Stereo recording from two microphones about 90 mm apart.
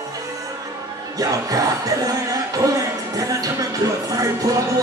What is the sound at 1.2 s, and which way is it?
Music, 40° right (ahead or behind).